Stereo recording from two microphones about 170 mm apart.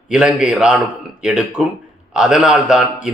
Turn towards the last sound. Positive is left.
turn(degrees=-5)  # may be behind; listen again after turning